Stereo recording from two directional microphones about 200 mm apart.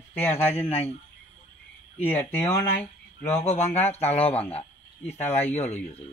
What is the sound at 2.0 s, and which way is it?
Speech, 10° left (ahead or behind).